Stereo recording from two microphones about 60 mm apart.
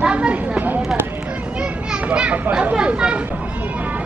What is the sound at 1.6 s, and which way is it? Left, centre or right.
Children playing, centre.